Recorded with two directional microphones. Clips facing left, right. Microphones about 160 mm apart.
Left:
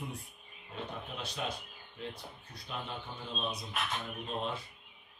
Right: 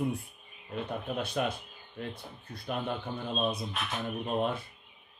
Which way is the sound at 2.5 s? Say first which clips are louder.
Right 8 dB; 55° right (ahead or behind).